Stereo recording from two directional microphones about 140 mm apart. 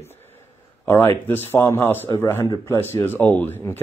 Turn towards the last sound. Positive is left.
turn(degrees=15)  # may be behind; listen again after turning